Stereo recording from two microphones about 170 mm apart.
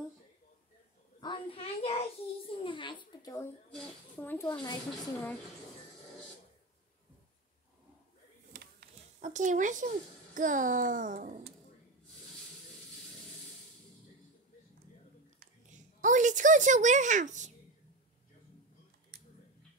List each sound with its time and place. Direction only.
1.2 s a sound: 30° left (ahead or behind)
2.4 s a woman's voice: 30° left (ahead or behind)
3.7 s speech: 10° left (ahead or behind)
4.5 s a woman's voice: 25° left (ahead or behind)
9.2 s a child's voice: 45° right (ahead or behind)
16.0 s a child's voice: 50° right (ahead or behind)